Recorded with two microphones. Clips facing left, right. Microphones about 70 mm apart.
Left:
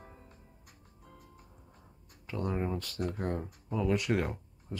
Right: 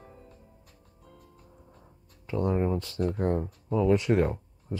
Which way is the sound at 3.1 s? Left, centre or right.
Right.